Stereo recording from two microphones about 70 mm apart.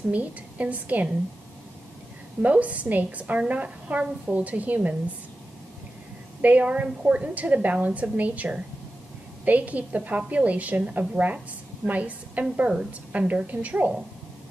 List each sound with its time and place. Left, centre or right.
0.1 s a woman's voice: centre
2.4 s a woman's voice: right
6.4 s a woman's voice: centre